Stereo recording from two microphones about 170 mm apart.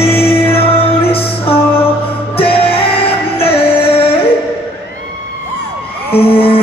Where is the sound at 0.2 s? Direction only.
35° left (ahead or behind).